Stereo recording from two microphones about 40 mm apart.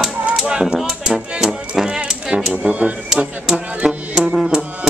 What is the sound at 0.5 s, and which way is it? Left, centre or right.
Typewriter, right.